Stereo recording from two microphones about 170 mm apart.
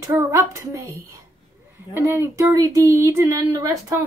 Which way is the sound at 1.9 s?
15° right (ahead or behind).